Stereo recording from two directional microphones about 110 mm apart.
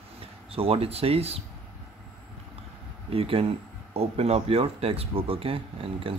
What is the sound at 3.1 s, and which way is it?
Speech, 60° right (ahead or behind).